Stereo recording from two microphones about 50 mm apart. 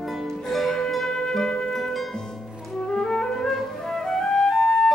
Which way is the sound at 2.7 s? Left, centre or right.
Centre.